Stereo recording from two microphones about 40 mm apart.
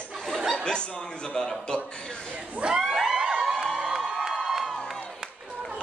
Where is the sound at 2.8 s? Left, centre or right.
Centre.